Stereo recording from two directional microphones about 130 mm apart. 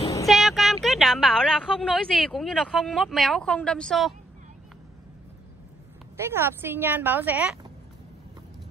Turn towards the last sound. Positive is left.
turn(degrees=-15)  # may be behind; listen again after turning